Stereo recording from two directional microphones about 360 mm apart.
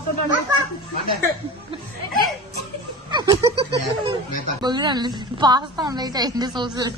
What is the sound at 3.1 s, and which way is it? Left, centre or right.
A woman's voice, centre.